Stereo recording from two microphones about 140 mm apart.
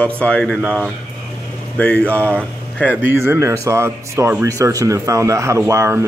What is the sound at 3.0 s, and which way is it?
Speech, 15° right (ahead or behind).